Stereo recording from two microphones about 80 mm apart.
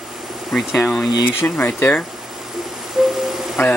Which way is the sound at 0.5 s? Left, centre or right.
Centre.